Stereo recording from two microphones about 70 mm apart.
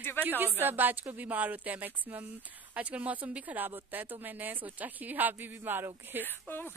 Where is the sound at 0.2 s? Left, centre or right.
Right.